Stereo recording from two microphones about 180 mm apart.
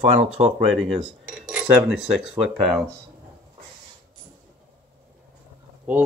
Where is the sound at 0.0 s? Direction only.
35° right (ahead or behind).